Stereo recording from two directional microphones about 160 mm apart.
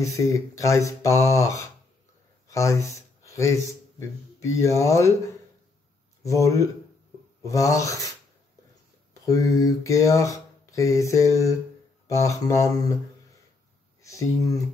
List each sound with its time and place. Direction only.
0.0 s speech: 20° left (ahead or behind)
6.2 s speech: 20° left (ahead or behind)
9.2 s speech: 20° left (ahead or behind)